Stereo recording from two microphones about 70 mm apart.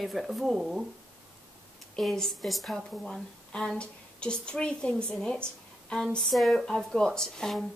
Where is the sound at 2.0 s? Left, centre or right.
Centre.